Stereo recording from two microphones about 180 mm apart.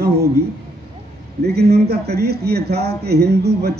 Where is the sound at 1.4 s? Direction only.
65° right (ahead or behind).